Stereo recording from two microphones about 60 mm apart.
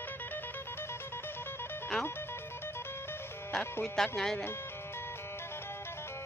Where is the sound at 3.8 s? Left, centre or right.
Centre.